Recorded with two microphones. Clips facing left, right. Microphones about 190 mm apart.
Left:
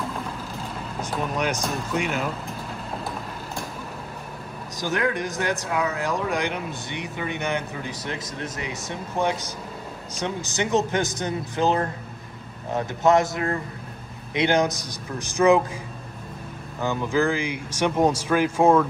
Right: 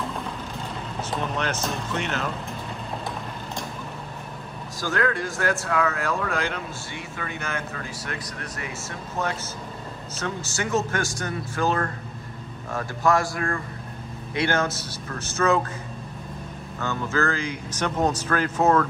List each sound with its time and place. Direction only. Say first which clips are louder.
0.9 s speech: left 1 dB; 5° left (ahead or behind)
4.7 s a man's voice: even; 15° left (ahead or behind)
16.8 s speech: left 3 dB; 15° left (ahead or behind)